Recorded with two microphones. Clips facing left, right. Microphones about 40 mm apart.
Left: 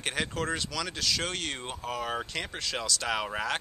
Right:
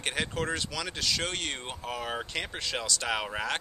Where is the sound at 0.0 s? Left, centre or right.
Centre.